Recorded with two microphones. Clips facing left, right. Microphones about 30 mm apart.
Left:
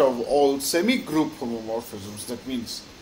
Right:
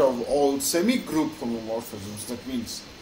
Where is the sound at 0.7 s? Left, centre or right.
Centre.